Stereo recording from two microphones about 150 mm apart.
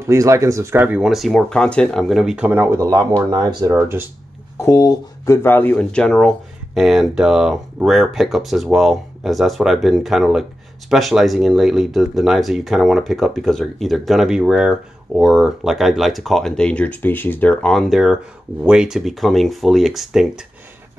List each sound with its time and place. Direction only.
0.0 s speech: 20° right (ahead or behind)
3.7 s speech: 10° right (ahead or behind)
4.6 s speech: 20° left (ahead or behind); by 20.4 s 5° right (ahead or behind)